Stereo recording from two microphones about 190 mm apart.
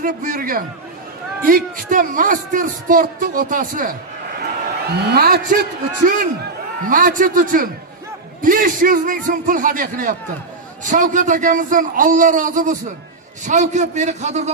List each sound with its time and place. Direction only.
0.0 s a man's voice: 45° right (ahead or behind)
4.8 s a man's voice: 55° right (ahead or behind); by 14.5 s 35° right (ahead or behind)